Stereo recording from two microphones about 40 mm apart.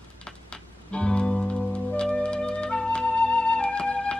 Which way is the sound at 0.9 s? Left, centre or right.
Left.